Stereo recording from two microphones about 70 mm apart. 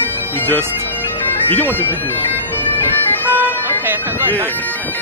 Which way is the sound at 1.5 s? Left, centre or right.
Left.